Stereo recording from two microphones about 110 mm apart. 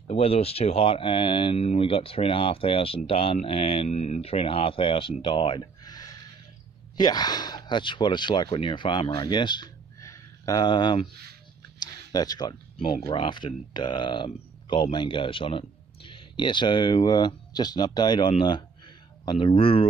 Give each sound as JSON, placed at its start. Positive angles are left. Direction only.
{"t": 0.1, "sound": "speech", "side_deg": 65}
{"t": 5.2, "sound": "a sound", "side_deg": 50}
{"t": 7.0, "sound": "speech", "side_deg": 40}
{"t": 9.9, "sound": "a sound", "side_deg": 30}
{"t": 13.1, "sound": "speech", "side_deg": 50}
{"t": 19.2, "sound": "speech", "side_deg": 55}